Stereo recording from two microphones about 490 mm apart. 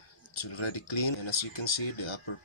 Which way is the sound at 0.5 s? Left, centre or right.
Left.